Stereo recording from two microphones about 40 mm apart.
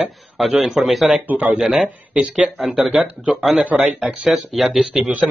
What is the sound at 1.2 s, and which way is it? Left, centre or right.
Speech, right.